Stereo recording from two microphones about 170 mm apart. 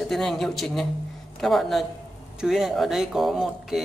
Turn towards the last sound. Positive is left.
turn(degrees=0)  # may be behind; listen again after turning